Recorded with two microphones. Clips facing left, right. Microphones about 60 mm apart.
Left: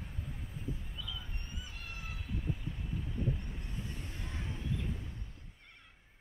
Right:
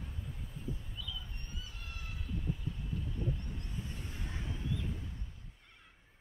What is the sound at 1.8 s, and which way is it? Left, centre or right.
Vehicle, centre.